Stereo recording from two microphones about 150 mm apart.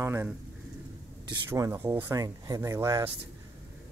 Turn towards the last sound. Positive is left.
turn(degrees=-20)  # may be behind; listen again after turning